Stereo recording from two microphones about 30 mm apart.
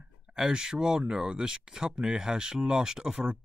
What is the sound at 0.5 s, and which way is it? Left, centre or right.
Speech, right.